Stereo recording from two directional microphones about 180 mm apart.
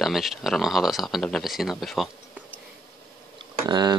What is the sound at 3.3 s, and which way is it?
Tick-tock, 25° right (ahead or behind).